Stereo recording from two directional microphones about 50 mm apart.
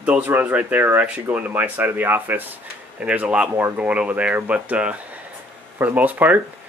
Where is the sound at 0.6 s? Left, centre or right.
Right.